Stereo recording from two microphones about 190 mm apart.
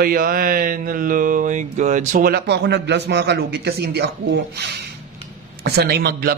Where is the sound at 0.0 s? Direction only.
50° right (ahead or behind).